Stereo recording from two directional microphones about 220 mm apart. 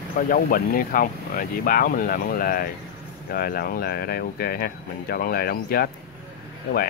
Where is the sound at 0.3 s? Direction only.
40° left (ahead or behind).